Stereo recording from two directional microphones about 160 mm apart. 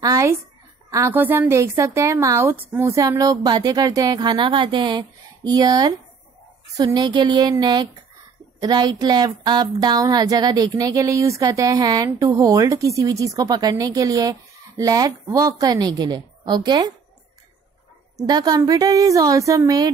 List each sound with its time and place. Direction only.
0.0 s a sound: 20° right (ahead or behind)
0.8 s speech: 20° right (ahead or behind)
18.1 s speech: 25° right (ahead or behind)